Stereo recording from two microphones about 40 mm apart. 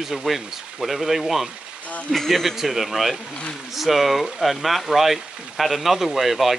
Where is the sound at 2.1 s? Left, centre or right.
Centre.